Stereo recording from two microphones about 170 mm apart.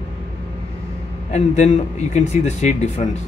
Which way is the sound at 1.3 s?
40° left (ahead or behind).